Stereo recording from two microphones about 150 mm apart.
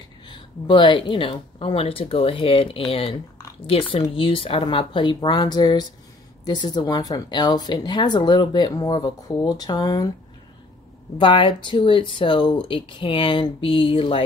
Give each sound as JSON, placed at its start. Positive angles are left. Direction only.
{"t": 0.3, "sound": "speech", "side_deg": 30}
{"t": 11.1, "sound": "speech", "side_deg": 30}